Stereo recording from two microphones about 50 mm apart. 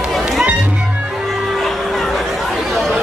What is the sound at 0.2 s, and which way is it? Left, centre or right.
Music, centre.